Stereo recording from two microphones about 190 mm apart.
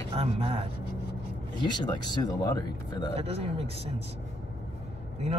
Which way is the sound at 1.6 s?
20° left (ahead or behind).